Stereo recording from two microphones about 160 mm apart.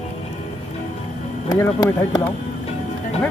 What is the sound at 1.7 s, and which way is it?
Speech, 25° left (ahead or behind).